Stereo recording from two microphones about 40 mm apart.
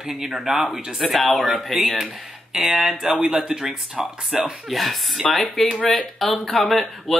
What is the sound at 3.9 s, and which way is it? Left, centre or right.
Speech, right.